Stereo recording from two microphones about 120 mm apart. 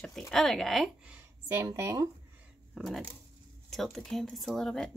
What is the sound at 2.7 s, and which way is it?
Speech, centre (ahead or behind).